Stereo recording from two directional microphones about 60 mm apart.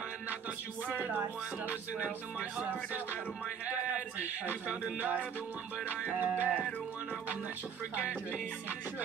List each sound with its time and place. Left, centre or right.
6.1 s music: right